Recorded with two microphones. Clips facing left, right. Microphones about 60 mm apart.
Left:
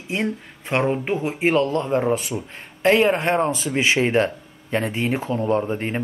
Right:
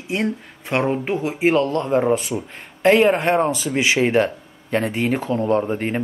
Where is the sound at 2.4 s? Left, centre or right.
Centre.